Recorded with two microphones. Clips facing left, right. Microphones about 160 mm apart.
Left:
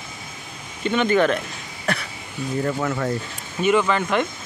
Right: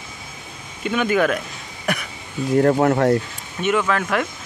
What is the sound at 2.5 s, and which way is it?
Speech, 60° right (ahead or behind).